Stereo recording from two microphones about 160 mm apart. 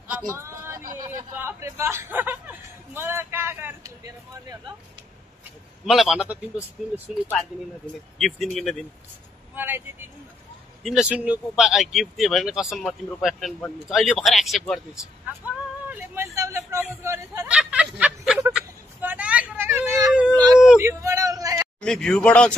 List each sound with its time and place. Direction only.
0.3 s speech: 15° right (ahead or behind)
5.9 s speech: centre (ahead or behind)
8.2 s speech: centre (ahead or behind)
9.6 s speech: 15° right (ahead or behind)
10.8 s speech: centre (ahead or behind)
15.4 s a sound: 10° right (ahead or behind)
17.6 s snicker: 5° right (ahead or behind)
18.5 s a sound: 10° right (ahead or behind)
20.1 s cat: 5° right (ahead or behind)
20.8 s a sound: 20° right (ahead or behind)
21.8 s speech: 5° left (ahead or behind)